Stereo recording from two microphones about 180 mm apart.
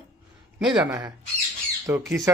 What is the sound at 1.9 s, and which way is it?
Speech, 15° right (ahead or behind).